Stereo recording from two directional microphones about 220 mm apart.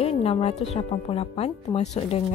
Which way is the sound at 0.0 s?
25° left (ahead or behind).